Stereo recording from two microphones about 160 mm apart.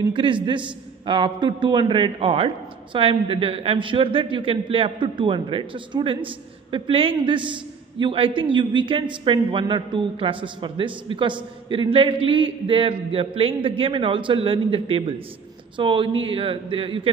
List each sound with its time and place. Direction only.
0.1 s a man's voice: 30° right (ahead or behind)